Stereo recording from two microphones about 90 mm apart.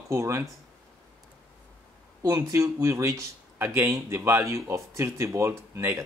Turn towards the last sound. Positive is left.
turn(degrees=-30)  # may be behind; listen again after turning